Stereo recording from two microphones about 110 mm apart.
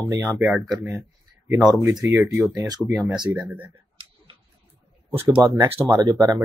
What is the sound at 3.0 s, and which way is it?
Speech, 10° right (ahead or behind).